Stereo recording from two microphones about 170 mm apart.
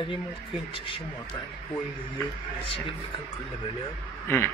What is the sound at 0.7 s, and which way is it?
Speech, 30° left (ahead or behind).